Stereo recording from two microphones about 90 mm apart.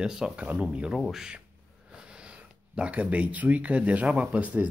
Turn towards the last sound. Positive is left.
turn(degrees=-15)  # may be behind; listen again after turning